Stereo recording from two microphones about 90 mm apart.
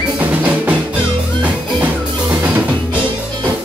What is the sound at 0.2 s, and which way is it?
Music, 15° right (ahead or behind).